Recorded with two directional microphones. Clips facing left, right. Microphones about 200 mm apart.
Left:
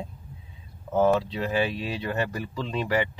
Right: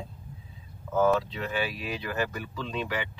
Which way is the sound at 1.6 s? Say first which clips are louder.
Left 4 dB; 30° left (ahead or behind).